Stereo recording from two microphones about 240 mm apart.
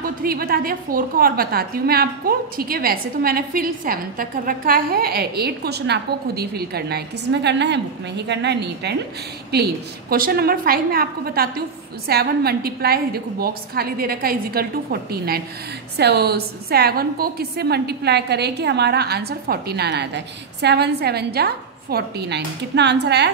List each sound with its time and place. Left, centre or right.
0.2 s a woman's voice: right